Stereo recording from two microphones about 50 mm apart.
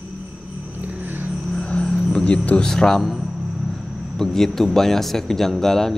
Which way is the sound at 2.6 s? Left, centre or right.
Centre.